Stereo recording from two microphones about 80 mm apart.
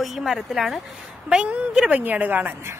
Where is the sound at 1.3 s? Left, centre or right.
Centre.